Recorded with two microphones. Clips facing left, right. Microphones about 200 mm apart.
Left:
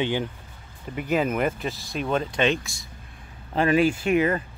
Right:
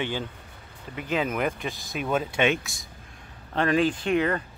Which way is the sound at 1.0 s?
5° left (ahead or behind).